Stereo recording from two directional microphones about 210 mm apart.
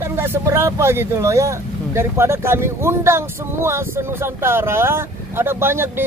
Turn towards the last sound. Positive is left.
turn(degrees=-10)  # may be behind; listen again after turning